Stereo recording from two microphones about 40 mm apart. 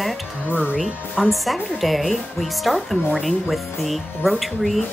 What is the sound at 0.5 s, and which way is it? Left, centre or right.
Speech, right.